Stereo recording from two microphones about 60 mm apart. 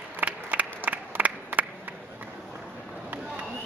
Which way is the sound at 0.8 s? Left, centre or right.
Right.